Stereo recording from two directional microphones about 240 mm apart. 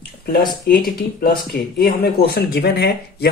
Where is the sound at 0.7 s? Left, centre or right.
Left.